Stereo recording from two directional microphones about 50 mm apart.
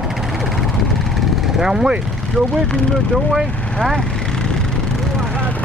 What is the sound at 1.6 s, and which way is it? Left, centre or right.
Speech, centre.